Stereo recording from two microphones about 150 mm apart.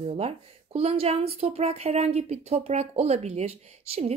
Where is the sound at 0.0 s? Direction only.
45° right (ahead or behind).